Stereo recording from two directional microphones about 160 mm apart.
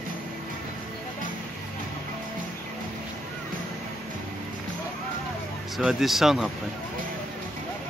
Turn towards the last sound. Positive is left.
turn(degrees=0)  # may be behind; listen again after turning